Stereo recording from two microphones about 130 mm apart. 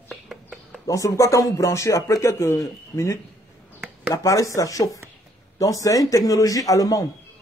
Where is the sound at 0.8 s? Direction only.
25° left (ahead or behind).